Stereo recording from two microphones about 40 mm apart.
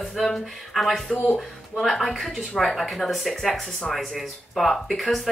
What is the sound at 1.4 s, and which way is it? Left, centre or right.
Speech, centre.